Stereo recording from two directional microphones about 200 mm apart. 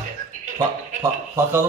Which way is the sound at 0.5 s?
15° right (ahead or behind).